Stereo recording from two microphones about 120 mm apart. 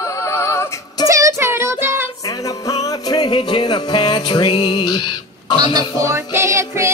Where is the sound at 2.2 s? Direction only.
30° left (ahead or behind).